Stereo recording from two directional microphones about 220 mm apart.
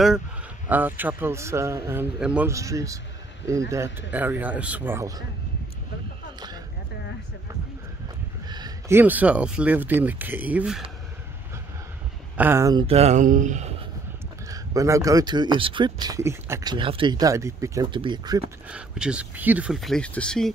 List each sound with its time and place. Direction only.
0.7 s speech: 10° right (ahead or behind)
8.5 s speech: 20° right (ahead or behind)
12.4 s speech: 10° right (ahead or behind)
12.8 s speech: 30° right (ahead or behind)
14.5 s speech: 15° right (ahead or behind)
18.7 s speech: 5° right (ahead or behind)